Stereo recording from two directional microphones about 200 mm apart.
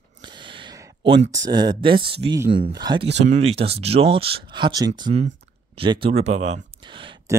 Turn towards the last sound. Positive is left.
turn(degrees=-15)  # may be behind; listen again after turning